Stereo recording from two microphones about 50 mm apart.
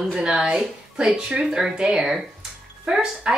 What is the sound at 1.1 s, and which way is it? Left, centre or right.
A woman's voice, centre.